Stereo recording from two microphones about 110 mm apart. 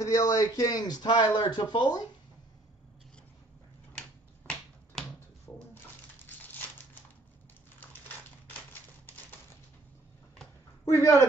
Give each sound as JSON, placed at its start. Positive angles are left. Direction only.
{"t": 0.0, "sound": "speech", "side_deg": 35}
{"t": 5.5, "sound": "bathtub", "side_deg": 20}
{"t": 6.2, "sound": "a sound", "side_deg": 15}
{"t": 10.9, "sound": "speech", "side_deg": 30}